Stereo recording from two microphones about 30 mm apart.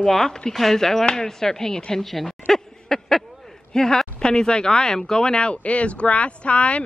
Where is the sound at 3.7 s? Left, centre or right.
Centre.